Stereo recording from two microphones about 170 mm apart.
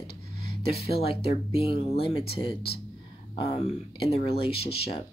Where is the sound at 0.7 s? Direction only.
35° left (ahead or behind).